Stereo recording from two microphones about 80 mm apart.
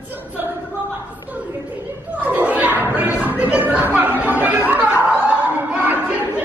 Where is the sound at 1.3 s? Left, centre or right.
Right.